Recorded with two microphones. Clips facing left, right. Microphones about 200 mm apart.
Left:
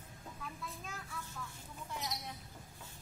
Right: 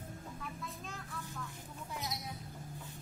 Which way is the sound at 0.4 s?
Centre (ahead or behind).